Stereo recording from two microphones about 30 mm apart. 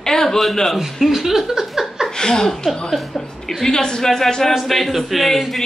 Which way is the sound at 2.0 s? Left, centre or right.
Left.